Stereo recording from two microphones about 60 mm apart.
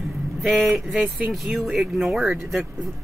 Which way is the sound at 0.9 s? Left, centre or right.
Right.